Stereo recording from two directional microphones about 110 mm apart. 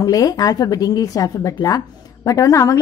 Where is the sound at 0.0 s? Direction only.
35° left (ahead or behind).